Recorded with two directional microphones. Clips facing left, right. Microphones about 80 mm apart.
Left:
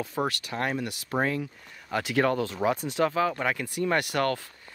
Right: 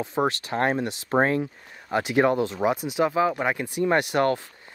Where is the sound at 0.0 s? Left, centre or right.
Right.